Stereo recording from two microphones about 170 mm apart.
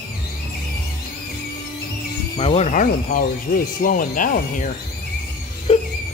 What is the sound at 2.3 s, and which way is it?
Speech, 40° left (ahead or behind).